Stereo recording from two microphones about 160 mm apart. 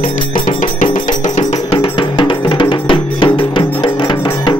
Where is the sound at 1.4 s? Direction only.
35° left (ahead or behind).